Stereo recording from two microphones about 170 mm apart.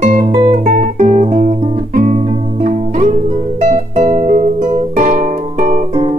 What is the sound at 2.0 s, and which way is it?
Music, 50° right (ahead or behind).